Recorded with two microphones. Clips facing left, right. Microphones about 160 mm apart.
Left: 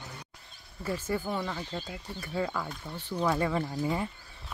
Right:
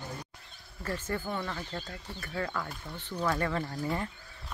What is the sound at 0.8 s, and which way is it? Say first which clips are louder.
Speech: left 3 dB; 10° left (ahead or behind).